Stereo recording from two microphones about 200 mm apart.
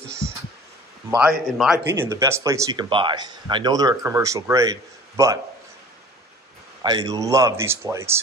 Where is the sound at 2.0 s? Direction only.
15° right (ahead or behind).